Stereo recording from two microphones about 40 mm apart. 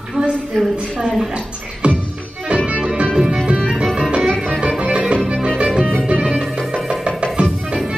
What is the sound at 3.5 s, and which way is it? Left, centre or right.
Music, right.